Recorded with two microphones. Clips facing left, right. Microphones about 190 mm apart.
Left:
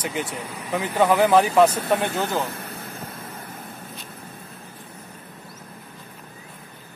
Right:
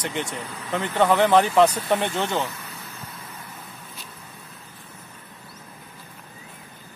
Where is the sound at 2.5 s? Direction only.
55° left (ahead or behind).